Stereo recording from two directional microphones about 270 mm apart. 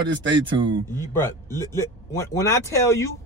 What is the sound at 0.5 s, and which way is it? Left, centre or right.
Speech, centre.